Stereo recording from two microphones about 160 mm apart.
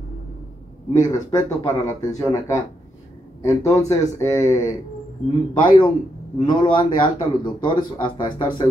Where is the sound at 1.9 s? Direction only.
20° left (ahead or behind).